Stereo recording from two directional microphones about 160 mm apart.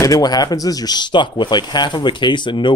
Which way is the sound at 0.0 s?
25° left (ahead or behind).